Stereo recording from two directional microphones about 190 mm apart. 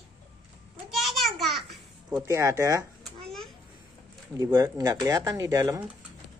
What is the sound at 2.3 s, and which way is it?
Child singing, 15° right (ahead or behind).